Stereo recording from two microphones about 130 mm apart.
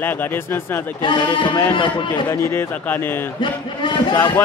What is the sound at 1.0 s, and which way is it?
Speech, 35° left (ahead or behind).